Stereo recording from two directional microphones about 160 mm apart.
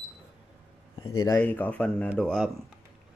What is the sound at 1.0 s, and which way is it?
Speech, 20° left (ahead or behind).